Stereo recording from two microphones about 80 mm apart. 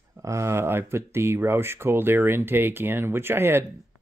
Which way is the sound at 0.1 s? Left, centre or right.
Right.